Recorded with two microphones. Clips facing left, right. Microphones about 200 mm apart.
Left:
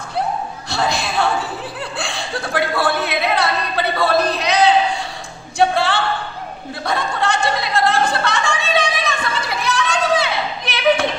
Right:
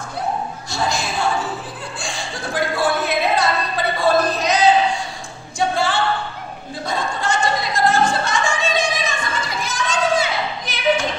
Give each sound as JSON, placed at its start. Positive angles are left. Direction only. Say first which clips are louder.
{"t": 0.7, "sound": "a woman's voice", "louder": "left 3 dB", "side_deg": 65}
{"t": 5.6, "sound": "a sound", "louder": "left 4 dB", "side_deg": 65}
{"t": 6.8, "sound": "music", "louder": "left 3 dB", "side_deg": 65}